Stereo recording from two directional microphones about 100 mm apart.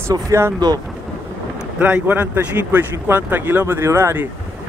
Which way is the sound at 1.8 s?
15° right (ahead or behind).